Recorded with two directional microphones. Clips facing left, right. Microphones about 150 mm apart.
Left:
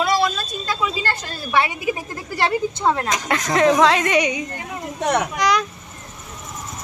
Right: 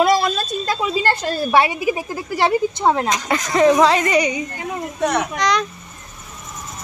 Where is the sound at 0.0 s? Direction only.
45° right (ahead or behind).